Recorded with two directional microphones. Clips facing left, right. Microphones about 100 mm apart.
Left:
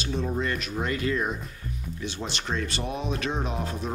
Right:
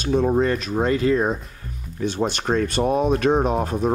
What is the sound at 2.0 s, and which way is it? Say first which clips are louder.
Speech: right 12 dB; 45° right (ahead or behind).